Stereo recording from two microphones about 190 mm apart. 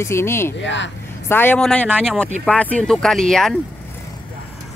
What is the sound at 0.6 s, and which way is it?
Speech, 70° left (ahead or behind).